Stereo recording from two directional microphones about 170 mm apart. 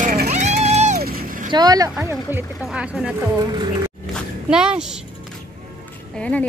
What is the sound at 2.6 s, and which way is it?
Speech, 5° right (ahead or behind).